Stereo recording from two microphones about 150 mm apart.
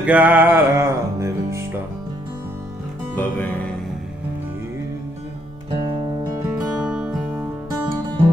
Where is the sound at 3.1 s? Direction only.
15° left (ahead or behind).